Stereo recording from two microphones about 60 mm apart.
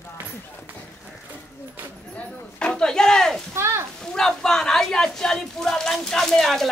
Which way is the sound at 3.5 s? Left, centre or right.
Right.